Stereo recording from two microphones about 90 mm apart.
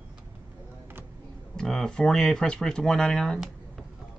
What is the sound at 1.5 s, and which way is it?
Speech, 5° left (ahead or behind).